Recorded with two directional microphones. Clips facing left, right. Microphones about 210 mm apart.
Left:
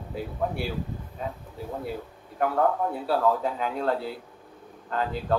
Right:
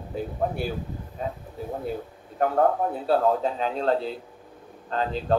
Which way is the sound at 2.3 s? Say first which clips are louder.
Right 2 dB; 30° right (ahead or behind).